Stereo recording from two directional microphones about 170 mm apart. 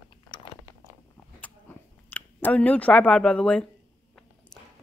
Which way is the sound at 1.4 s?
10° left (ahead or behind).